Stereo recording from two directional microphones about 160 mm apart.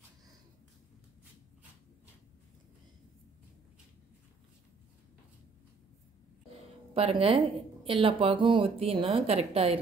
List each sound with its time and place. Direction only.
6.9 s a woman's voice: 35° right (ahead or behind)